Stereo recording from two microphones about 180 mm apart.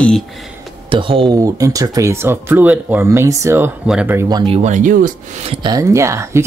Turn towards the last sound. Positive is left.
turn(degrees=-15)  # may be behind; listen again after turning